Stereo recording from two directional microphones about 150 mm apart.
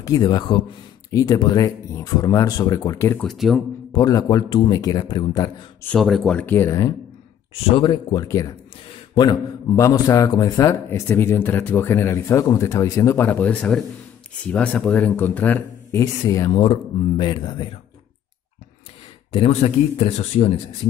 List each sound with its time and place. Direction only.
0.0 s a man's voice: 25° left (ahead or behind)
3.3 s speech: centre (ahead or behind)
3.9 s a man's voice: 25° left (ahead or behind)
5.9 s speech: centre (ahead or behind); by 6.9 s 20° left (ahead or behind)
7.5 s a man's voice: 35° left (ahead or behind); by 16.0 s 10° left (ahead or behind)
16.0 s a man's voice: 20° left (ahead or behind)
17.2 s speech: 30° left (ahead or behind)
19.3 s speech: 45° left (ahead or behind)